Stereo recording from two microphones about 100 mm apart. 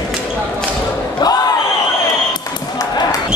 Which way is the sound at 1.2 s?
45° left (ahead or behind).